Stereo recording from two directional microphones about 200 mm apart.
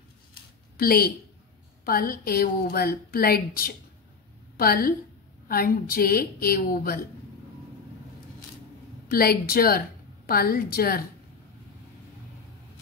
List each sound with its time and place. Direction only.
0.7 s a woman's voice: 50° left (ahead or behind)
9.1 s a woman's voice: 50° left (ahead or behind)